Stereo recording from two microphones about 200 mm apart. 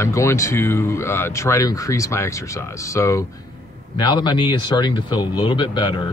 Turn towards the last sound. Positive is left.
turn(degrees=25)  # may be behind; listen again after turning